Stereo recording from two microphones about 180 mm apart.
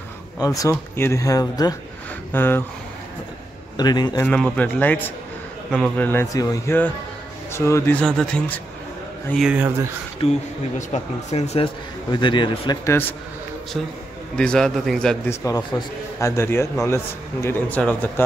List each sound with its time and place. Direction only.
0.4 s speech: 20° left (ahead or behind)
3.7 s speech: 25° left (ahead or behind)
4.2 s speech: 10° left (ahead or behind); by 9.9 s 10° right (ahead or behind)
10.2 s speech: 35° left (ahead or behind)
14.3 s a man's voice: 5° left (ahead or behind)
15.2 s speech: 15° left (ahead or behind)